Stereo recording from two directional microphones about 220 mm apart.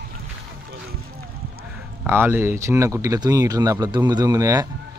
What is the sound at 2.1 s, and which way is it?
Speech, 10° right (ahead or behind).